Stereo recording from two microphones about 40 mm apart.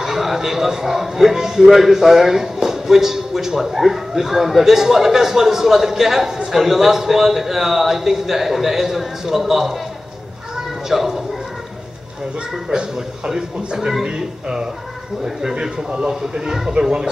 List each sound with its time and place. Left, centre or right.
0.0 s a man's voice: centre
10.9 s a man's voice: centre
13.3 s a man's voice: centre
14.0 s speech: right
16.1 s a man's voice: centre